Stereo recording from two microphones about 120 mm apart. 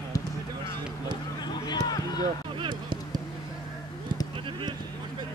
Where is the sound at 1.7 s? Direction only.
35° left (ahead or behind).